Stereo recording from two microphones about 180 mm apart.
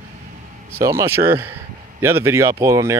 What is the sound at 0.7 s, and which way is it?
Speech, 15° right (ahead or behind).